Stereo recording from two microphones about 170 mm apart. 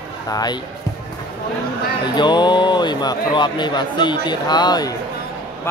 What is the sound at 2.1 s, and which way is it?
A man's voice, 25° left (ahead or behind).